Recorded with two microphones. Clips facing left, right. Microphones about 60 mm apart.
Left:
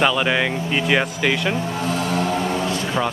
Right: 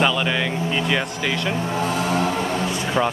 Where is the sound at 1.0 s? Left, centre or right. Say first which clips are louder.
Left 3 dB; centre.